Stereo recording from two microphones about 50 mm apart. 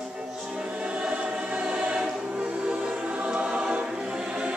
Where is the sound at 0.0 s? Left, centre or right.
Centre.